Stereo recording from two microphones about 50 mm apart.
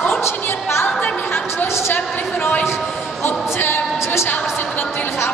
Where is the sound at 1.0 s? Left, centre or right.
Left.